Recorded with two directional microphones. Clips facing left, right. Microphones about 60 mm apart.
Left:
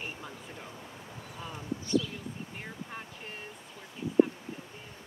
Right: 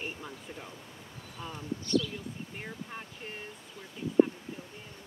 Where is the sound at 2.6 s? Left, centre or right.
Centre.